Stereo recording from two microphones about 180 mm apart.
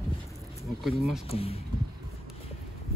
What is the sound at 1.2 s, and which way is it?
Speech, 35° left (ahead or behind).